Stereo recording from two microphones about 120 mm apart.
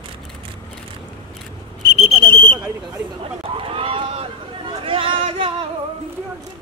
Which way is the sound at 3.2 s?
50° right (ahead or behind).